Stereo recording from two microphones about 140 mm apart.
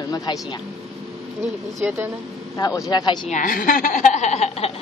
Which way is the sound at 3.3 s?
70° left (ahead or behind).